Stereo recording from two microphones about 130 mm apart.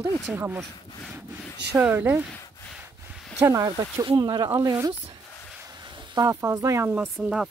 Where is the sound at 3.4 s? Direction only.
25° right (ahead or behind).